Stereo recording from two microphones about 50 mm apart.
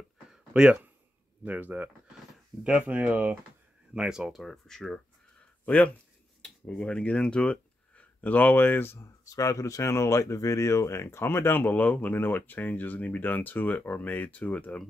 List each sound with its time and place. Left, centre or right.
1.4 s speech: right
2.9 s speech: right
3.9 s speech: centre
4.4 s speech: centre
5.7 s speech: left
6.7 s speech: centre; by 9.0 s left
9.0 s speech: left